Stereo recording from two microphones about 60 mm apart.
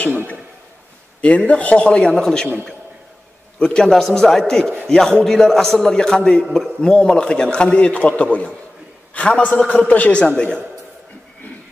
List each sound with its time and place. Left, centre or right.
1.2 s a man's voice: left
3.5 s a man's voice: centre